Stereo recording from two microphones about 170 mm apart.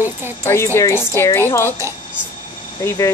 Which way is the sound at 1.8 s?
15° right (ahead or behind).